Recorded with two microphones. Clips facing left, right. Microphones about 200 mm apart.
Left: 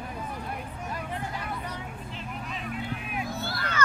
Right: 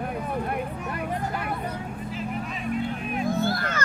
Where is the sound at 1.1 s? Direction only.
55° right (ahead or behind).